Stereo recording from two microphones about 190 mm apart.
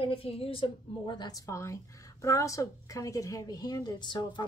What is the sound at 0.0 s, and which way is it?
A woman's voice, 30° left (ahead or behind).